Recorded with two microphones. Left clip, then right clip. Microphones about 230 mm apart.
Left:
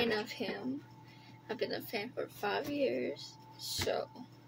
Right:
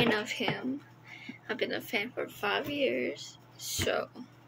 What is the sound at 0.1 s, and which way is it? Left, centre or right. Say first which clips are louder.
Speech: right 5 dB; centre.